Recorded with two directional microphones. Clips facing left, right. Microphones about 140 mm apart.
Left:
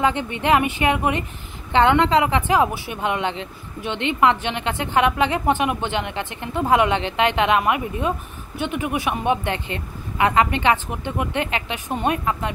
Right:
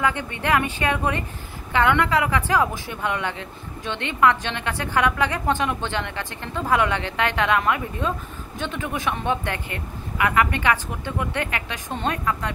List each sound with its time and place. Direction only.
0.0 s a woman's voice: 20° left (ahead or behind)